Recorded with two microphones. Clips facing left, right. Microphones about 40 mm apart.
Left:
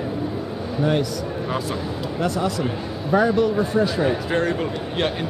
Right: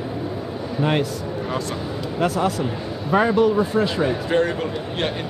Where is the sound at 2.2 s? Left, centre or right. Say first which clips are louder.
Right 2 dB; centre.